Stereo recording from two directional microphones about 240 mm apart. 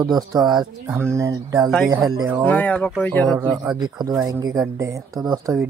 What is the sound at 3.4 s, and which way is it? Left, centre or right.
Speech, centre.